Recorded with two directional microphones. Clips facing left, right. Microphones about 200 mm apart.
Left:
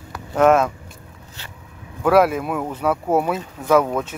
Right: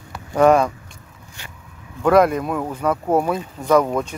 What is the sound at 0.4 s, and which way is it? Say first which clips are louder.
Speech: right 1 dB; centre (ahead or behind).